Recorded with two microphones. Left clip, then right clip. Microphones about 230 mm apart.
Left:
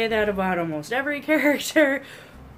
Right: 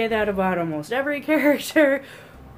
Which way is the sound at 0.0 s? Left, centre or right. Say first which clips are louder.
Right 1 dB; centre.